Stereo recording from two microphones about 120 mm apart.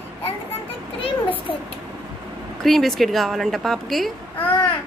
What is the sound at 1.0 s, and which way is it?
Speech, 45° left (ahead or behind).